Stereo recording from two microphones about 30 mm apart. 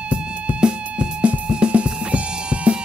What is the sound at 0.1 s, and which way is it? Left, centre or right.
Music, right.